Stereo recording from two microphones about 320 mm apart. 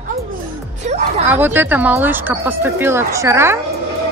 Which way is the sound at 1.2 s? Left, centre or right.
Centre.